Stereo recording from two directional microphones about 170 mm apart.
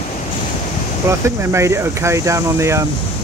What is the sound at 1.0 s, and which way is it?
Speech, 15° right (ahead or behind).